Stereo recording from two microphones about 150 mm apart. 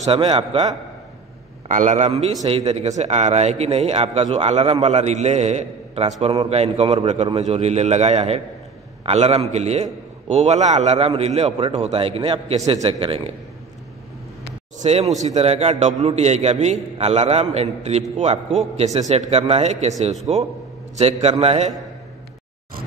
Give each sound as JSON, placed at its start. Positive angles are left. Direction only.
{"t": 0.0, "sound": "a man's voice", "side_deg": -40}
{"t": 1.7, "sound": "a man's voice", "side_deg": -55}
{"t": 14.8, "sound": "a man's voice", "side_deg": -45}